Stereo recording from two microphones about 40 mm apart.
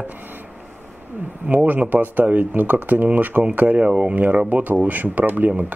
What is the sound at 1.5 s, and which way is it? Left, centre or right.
Speech, right.